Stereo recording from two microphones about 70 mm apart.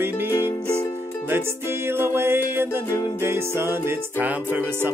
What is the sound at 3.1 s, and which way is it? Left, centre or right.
Music, right.